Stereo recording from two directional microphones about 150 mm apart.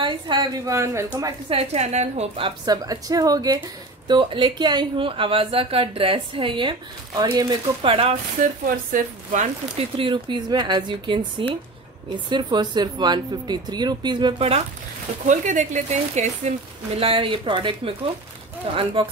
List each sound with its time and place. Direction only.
0.0 s speech: 30° right (ahead or behind)
1.5 s a woman's voice: 45° right (ahead or behind)
8.4 s speech: 65° right (ahead or behind)
9.8 s a woman's voice: 35° right (ahead or behind)
15.2 s a woman's voice: 55° right (ahead or behind); by 18.8 s 40° right (ahead or behind)